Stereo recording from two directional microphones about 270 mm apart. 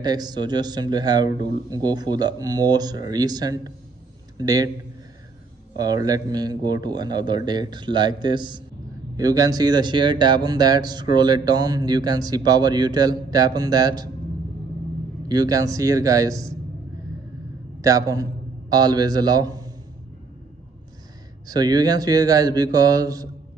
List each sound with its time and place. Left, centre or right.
0.0 s speech: centre
5.8 s speech: centre
15.2 s speech: centre
17.7 s a man's voice: centre
21.5 s speech: centre